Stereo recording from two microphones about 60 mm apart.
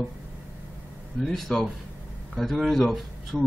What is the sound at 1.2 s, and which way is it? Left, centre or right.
Speech, centre.